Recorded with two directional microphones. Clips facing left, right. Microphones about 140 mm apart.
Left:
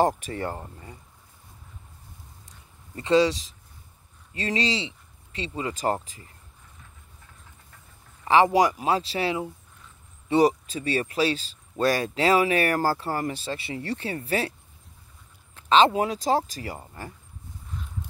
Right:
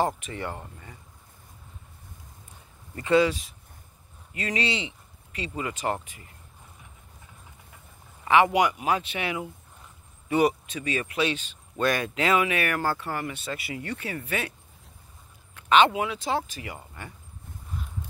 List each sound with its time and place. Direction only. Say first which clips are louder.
0.0 s speech: left 4 dB; 40° left (ahead or behind)
3.0 s speech: left 1 dB; 25° left (ahead or behind)
8.3 s speech: left 2 dB; 35° left (ahead or behind)
15.5 s speech: left 1 dB; 35° left (ahead or behind)